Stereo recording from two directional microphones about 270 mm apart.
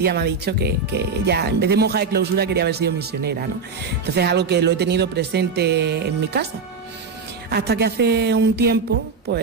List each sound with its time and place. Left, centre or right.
0.0 s speech: right
7.5 s speech: right